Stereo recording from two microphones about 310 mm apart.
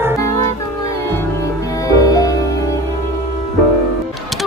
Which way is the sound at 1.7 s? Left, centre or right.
Centre.